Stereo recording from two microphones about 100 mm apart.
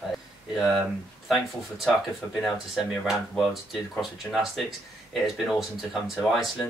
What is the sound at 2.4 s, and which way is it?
Speech, centre (ahead or behind).